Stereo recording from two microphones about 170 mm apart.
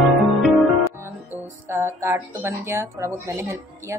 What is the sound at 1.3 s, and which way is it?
A woman's voice, 15° right (ahead or behind).